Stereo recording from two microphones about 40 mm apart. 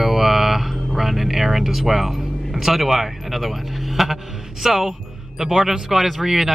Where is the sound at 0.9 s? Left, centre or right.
Centre.